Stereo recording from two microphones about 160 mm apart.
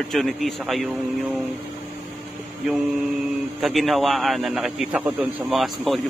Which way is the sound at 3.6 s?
Centre (ahead or behind).